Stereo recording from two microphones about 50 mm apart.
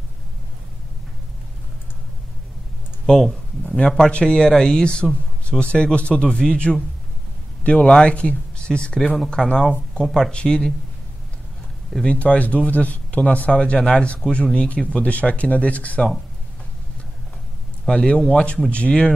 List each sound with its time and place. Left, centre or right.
3.1 s speech: centre
10.0 s speech: centre
10.3 s speech: centre
12.0 s speech: left
13.7 s speech: centre
14.3 s speech: left
17.9 s speech: left